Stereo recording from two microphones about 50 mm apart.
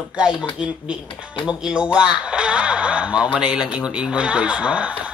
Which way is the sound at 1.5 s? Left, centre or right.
Right.